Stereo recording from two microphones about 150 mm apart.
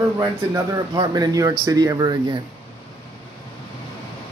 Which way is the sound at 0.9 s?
30° right (ahead or behind).